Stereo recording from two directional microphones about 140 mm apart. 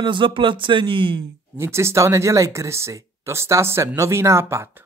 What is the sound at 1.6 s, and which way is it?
Speech, 20° right (ahead or behind).